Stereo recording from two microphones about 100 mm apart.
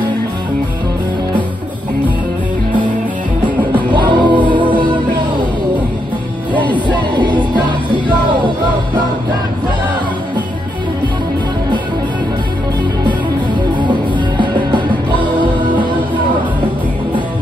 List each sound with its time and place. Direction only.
3.4 s music: 50° right (ahead or behind)
6.9 s music: 50° right (ahead or behind)
14.4 s music: 55° right (ahead or behind)